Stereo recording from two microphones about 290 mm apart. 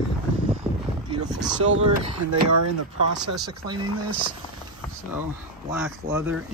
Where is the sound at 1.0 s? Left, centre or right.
Centre.